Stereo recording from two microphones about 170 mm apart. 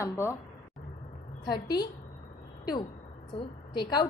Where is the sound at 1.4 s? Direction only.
25° left (ahead or behind).